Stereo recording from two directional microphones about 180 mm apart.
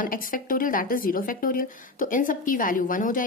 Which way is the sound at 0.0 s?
50° left (ahead or behind).